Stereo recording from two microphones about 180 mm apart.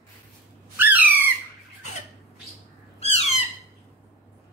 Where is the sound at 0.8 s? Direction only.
10° right (ahead or behind).